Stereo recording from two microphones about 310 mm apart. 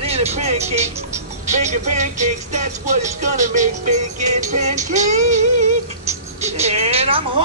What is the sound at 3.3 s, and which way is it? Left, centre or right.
Music, right.